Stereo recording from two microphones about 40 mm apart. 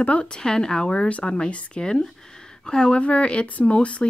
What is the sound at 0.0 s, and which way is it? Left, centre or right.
Speech, left.